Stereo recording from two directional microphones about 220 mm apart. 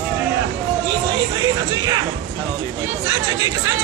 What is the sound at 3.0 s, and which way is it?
Speech, 15° right (ahead or behind).